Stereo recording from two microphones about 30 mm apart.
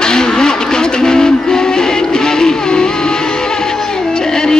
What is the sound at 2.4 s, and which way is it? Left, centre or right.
Vehicle, left.